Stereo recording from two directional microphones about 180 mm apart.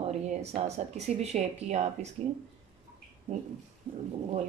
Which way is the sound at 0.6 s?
35° right (ahead or behind).